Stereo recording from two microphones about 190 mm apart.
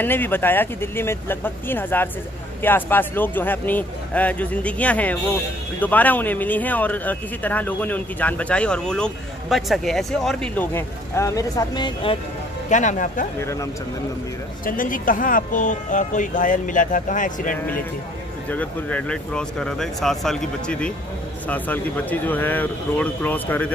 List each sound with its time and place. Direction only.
0.0 s speech: 10° left (ahead or behind)
12.6 s speech: 40° left (ahead or behind)
13.4 s speech: 15° left (ahead or behind)
14.6 s speech: 45° left (ahead or behind)
18.5 s speech: 5° left (ahead or behind)